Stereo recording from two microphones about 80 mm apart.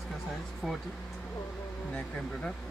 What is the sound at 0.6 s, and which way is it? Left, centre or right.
Speech, centre.